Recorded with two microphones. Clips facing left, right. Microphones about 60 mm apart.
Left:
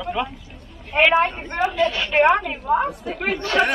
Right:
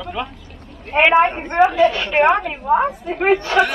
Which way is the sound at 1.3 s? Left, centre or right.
Right.